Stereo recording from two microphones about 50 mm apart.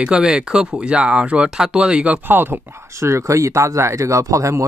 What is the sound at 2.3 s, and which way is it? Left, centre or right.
Speech, right.